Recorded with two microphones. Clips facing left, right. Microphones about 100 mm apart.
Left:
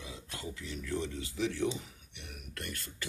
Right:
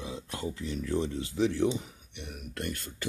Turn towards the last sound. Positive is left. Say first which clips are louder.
# right 7 dB
turn(degrees=-30)  # may be behind; listen again after turning